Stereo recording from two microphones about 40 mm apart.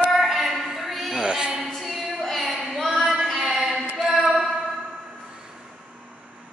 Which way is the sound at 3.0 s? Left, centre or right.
Centre.